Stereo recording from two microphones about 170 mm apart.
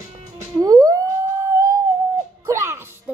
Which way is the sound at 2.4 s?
15° right (ahead or behind).